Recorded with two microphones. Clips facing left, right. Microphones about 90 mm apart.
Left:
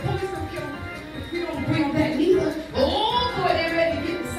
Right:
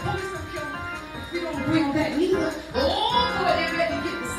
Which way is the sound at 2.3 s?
70° right (ahead or behind).